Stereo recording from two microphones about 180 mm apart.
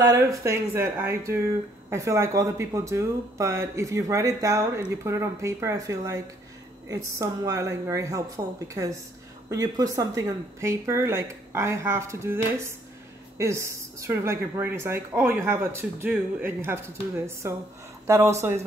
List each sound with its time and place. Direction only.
0.0 s speech: 20° right (ahead or behind)